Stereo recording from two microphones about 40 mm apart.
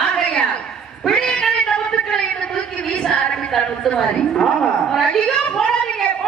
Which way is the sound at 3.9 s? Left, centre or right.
Centre.